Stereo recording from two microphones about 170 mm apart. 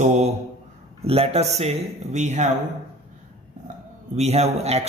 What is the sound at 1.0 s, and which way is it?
Speech, 35° right (ahead or behind).